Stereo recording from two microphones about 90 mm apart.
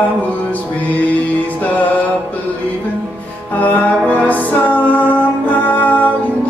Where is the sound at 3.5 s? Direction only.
20° left (ahead or behind).